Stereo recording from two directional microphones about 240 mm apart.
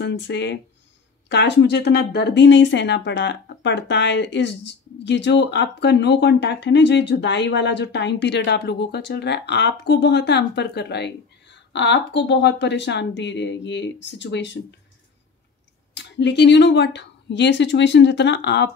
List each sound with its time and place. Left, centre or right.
0.0 s speech: left
15.9 s speech: left